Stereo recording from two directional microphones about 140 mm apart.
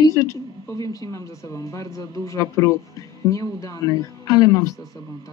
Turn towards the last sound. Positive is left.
turn(degrees=25)  # may be behind; listen again after turning